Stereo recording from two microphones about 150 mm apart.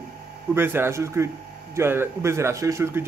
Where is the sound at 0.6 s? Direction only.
15° right (ahead or behind).